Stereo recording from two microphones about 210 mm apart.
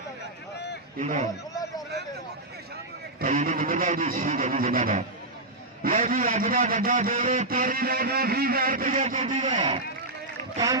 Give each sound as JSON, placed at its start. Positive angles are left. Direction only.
{"t": 0.9, "sound": "speech", "side_deg": -35}
{"t": 3.3, "sound": "speech", "side_deg": -30}
{"t": 3.5, "sound": "a sound", "side_deg": -45}
{"t": 3.8, "sound": "speech", "side_deg": -30}
{"t": 6.1, "sound": "speech", "side_deg": -40}
{"t": 7.4, "sound": "a sound", "side_deg": -45}
{"t": 8.8, "sound": "speech", "side_deg": -30}